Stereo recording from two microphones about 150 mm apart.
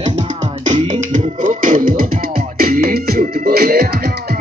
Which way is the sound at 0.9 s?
55° right (ahead or behind).